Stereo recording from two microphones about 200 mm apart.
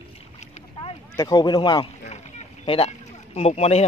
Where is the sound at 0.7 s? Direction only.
20° left (ahead or behind).